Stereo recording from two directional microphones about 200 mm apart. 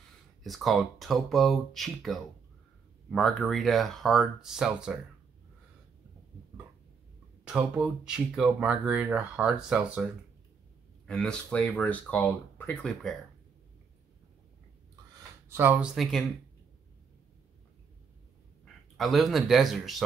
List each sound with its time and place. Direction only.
0.4 s speech: centre (ahead or behind)
7.4 s speech: 5° right (ahead or behind)
11.1 s speech: 5° left (ahead or behind)
15.5 s speech: 10° right (ahead or behind)
18.9 s speech: centre (ahead or behind)